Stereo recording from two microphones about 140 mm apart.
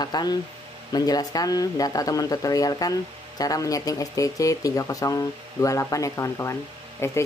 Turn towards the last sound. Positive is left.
turn(degrees=20)  # may be behind; listen again after turning